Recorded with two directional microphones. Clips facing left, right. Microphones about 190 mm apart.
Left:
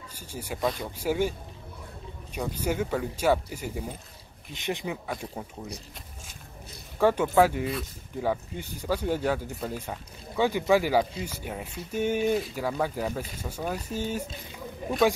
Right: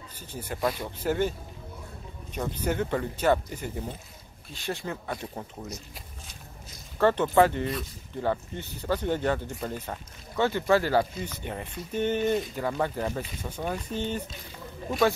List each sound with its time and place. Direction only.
0.1 s speech: 10° left (ahead or behind)
0.6 s speech: centre (ahead or behind)
1.0 s speech: 10° left (ahead or behind)
2.3 s speech: 10° left (ahead or behind)
4.6 s speech: 20° left (ahead or behind)
5.0 s speech: 5° left (ahead or behind)
7.0 s speech: 10° left (ahead or behind)